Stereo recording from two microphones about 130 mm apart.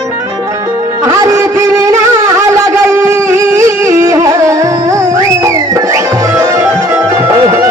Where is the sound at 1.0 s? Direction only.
25° right (ahead or behind).